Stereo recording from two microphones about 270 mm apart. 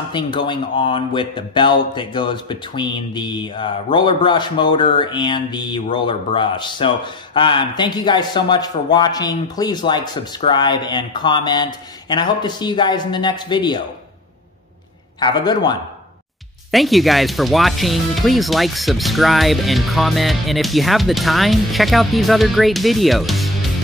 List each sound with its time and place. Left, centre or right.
0.1 s speech: centre
15.1 s speech: centre
16.7 s speech: centre